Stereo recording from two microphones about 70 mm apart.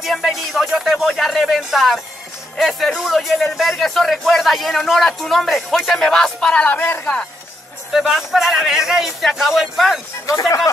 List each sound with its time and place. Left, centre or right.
0.0 s speech: centre
6.5 s speech: left
7.9 s speech: centre